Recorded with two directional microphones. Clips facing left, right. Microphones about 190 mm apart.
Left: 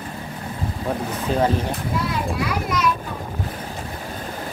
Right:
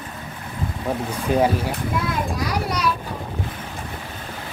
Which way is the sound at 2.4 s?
35° right (ahead or behind).